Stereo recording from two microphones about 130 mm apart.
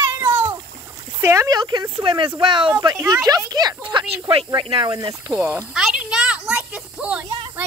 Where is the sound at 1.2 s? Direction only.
25° right (ahead or behind).